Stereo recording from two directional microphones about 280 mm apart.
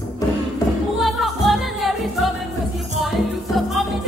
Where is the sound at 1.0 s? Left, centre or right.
Centre.